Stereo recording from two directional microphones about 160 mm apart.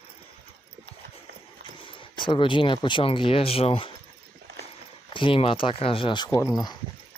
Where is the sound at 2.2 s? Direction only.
30° left (ahead or behind).